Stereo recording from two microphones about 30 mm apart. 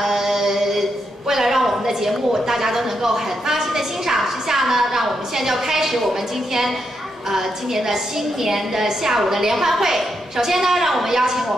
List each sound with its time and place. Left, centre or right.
0.0 s a man's voice: centre